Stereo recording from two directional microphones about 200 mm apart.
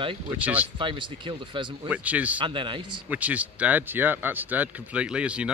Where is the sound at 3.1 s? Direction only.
5° right (ahead or behind).